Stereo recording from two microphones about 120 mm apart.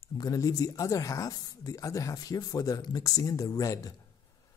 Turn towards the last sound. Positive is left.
turn(degrees=30)  # may be behind; listen again after turning